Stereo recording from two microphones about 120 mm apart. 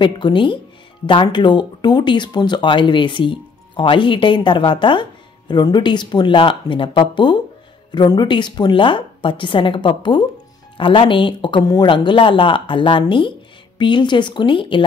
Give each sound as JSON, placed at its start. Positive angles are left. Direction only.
{"t": 0.0, "sound": "speech", "side_deg": 40}